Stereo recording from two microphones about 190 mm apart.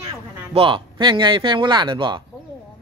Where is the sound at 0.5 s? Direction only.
25° right (ahead or behind).